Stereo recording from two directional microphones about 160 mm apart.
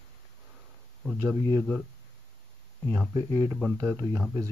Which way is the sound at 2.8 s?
5° left (ahead or behind).